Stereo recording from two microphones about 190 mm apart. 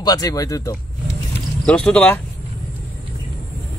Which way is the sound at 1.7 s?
5° left (ahead or behind).